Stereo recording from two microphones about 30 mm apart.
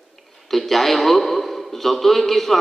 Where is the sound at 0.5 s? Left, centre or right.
Centre.